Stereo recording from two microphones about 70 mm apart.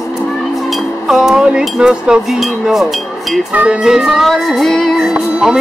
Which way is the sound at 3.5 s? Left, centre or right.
Centre.